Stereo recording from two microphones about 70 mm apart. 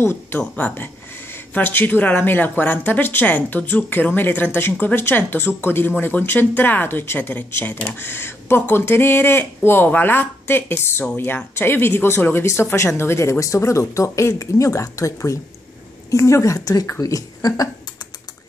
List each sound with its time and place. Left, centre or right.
0.0 s speech: left
0.4 s speech: centre; by 17.6 s left